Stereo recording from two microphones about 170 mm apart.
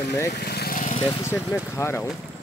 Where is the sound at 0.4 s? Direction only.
70° left (ahead or behind).